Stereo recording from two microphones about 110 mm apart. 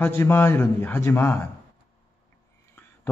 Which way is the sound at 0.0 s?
20° left (ahead or behind).